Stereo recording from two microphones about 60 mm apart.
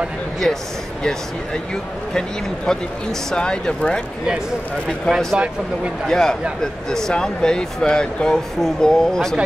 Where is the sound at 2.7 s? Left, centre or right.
Centre.